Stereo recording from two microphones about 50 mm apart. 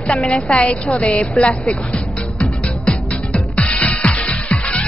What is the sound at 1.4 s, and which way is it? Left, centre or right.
Music, left.